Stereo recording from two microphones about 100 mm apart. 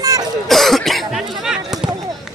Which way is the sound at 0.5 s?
Centre (ahead or behind).